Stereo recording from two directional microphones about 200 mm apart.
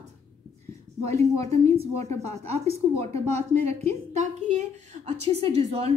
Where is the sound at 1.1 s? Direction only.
35° right (ahead or behind).